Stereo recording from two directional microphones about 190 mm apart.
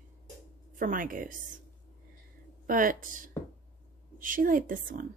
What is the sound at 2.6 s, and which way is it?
Speech, 45° right (ahead or behind).